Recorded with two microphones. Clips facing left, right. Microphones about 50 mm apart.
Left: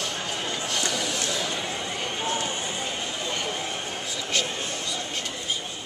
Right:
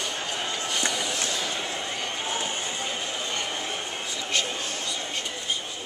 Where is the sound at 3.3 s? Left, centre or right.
Centre.